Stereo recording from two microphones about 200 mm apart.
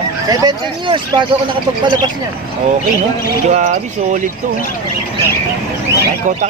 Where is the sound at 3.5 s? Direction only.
40° right (ahead or behind).